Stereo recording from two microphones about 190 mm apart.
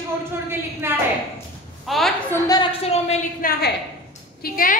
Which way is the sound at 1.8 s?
Centre (ahead or behind).